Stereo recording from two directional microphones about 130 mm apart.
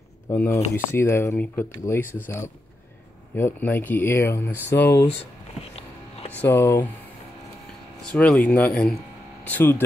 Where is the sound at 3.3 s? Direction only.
15° left (ahead or behind).